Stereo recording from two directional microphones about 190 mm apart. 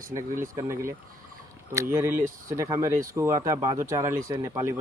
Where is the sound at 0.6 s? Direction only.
15° right (ahead or behind).